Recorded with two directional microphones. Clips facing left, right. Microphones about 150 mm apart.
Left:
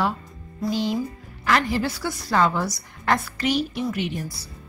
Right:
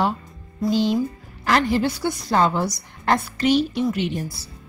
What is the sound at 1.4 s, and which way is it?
A woman's voice, 30° right (ahead or behind).